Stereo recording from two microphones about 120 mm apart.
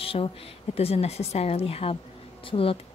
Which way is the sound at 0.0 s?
50° left (ahead or behind).